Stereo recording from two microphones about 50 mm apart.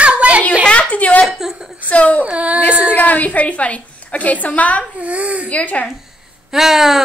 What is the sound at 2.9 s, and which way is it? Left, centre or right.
A woman's voice, left.